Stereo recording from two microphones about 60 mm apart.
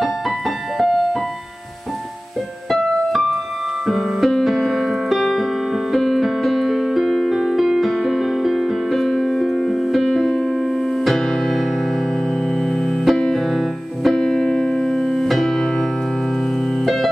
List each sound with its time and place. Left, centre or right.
0.7 s music: centre
2.7 s music: centre
5.9 s piano: centre
11.1 s music: centre
13.0 s music: centre
16.8 s piano: centre